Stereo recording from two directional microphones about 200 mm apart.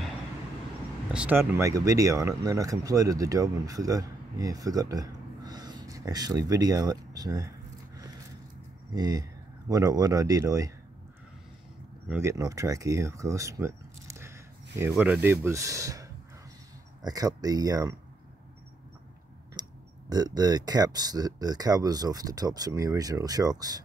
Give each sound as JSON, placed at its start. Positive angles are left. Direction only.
{"t": 1.1, "sound": "speech", "side_deg": -5}
{"t": 8.9, "sound": "speech", "side_deg": -20}
{"t": 12.1, "sound": "speech", "side_deg": -15}
{"t": 19.6, "sound": "clicking", "side_deg": -20}
{"t": 20.1, "sound": "speech", "side_deg": -20}